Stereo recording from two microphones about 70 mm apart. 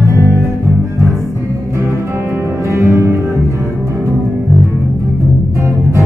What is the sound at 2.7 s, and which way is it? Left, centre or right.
Music, right.